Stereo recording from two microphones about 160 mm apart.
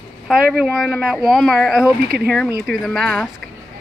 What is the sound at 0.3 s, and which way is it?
Speech, centre (ahead or behind).